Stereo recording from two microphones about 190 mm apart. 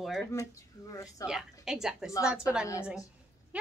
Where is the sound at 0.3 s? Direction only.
15° left (ahead or behind).